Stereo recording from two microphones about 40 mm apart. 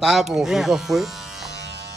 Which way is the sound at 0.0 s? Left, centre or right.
Centre.